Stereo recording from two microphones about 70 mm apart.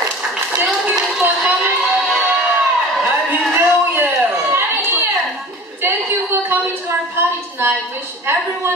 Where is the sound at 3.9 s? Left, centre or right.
Right.